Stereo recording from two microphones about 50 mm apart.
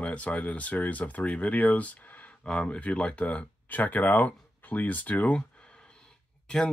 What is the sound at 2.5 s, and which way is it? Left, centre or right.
Speech, centre.